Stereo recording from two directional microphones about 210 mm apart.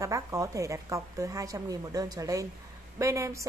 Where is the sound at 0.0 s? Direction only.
15° right (ahead or behind).